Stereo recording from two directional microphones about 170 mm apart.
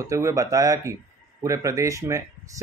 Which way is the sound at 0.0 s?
20° right (ahead or behind).